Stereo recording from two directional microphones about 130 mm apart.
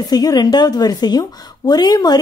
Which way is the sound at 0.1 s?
30° left (ahead or behind).